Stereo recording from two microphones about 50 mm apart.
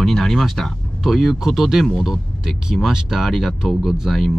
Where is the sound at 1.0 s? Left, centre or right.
Centre.